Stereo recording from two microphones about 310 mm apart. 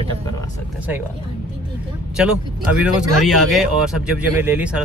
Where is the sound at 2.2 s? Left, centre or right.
Centre.